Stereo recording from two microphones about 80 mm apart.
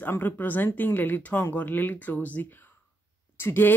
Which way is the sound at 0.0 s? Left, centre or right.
Left.